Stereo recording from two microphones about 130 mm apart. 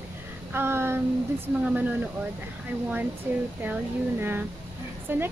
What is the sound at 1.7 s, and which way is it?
Speech, 15° right (ahead or behind).